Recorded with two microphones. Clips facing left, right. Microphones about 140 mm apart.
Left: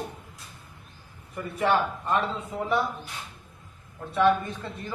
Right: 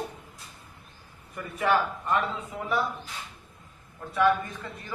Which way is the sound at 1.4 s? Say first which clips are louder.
Left 1 dB; 25° left (ahead or behind).